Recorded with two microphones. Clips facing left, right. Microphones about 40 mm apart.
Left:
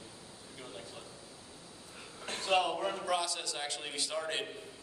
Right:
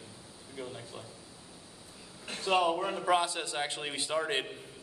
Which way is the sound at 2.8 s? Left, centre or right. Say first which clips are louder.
Right 5 dB; right.